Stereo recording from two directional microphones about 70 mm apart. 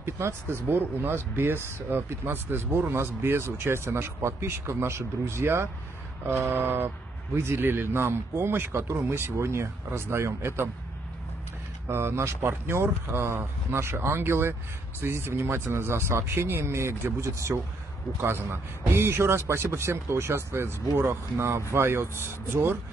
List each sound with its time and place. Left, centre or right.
0.0 s speech: right
11.9 s speech: right